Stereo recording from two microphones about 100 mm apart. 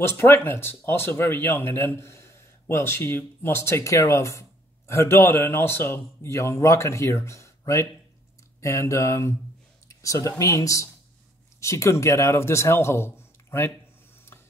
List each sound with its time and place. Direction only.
0.0 s speech: 20° left (ahead or behind)